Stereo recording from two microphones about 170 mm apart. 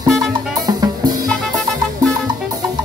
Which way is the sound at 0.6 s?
25° right (ahead or behind).